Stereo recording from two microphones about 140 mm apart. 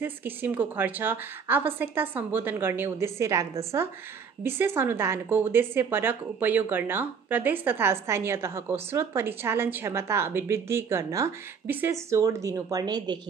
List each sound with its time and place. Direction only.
0.0 s speech: 15° right (ahead or behind); by 13.2 s 30° right (ahead or behind)